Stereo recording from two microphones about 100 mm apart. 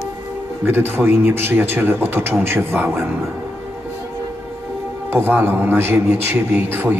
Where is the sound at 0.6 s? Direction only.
20° right (ahead or behind).